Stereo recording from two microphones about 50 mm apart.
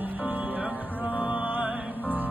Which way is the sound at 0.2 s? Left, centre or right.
Right.